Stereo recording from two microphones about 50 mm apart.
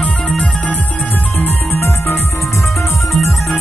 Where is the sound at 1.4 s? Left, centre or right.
Left.